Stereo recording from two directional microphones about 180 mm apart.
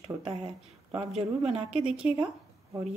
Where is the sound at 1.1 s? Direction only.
35° right (ahead or behind).